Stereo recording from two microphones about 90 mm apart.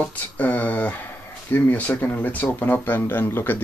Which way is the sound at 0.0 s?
15° left (ahead or behind).